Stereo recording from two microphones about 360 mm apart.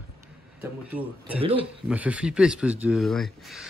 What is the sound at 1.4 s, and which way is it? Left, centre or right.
Speech, centre.